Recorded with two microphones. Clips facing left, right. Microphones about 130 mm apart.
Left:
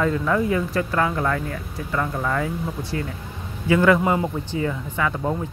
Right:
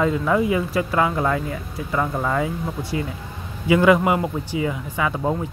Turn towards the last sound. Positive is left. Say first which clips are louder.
# right 1 dB
turn(degrees=-15)  # may be behind; listen again after turning